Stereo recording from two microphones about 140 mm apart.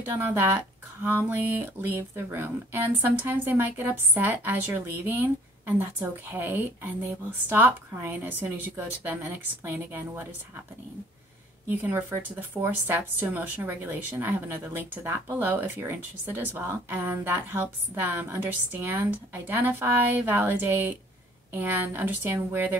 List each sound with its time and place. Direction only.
0.2 s speech: 15° right (ahead or behind)
11.7 s speech: 15° right (ahead or behind)